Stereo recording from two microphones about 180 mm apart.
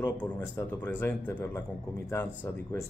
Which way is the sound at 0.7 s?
10° left (ahead or behind).